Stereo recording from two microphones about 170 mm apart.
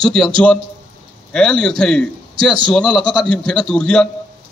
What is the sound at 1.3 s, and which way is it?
A man's voice, 5° left (ahead or behind).